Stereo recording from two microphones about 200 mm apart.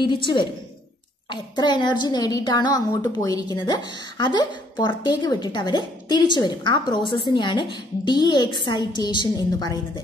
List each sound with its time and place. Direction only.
0.0 s a woman's voice: 25° left (ahead or behind)